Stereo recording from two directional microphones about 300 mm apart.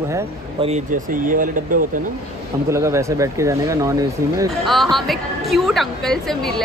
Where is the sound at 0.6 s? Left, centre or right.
Right.